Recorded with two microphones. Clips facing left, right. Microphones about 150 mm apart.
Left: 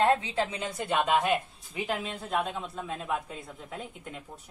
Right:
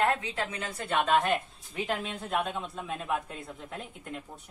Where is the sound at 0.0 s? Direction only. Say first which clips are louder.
Left 3 dB; 25° left (ahead or behind).